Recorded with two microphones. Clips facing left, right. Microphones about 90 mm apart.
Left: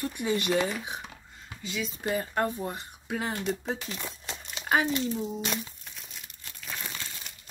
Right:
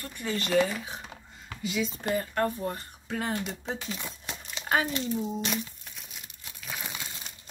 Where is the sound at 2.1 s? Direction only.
15° left (ahead or behind).